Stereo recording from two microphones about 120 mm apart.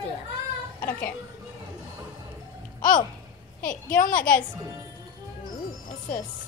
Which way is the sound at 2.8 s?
90° left.